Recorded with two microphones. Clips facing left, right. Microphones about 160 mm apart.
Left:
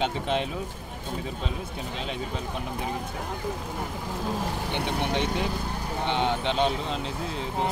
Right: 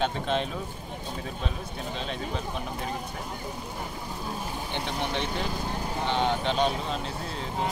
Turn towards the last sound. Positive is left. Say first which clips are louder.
# left 1 dB
turn(degrees=20)  # may be behind; listen again after turning